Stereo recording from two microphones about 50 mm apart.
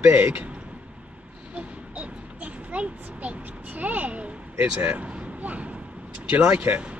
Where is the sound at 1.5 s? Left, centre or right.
Right.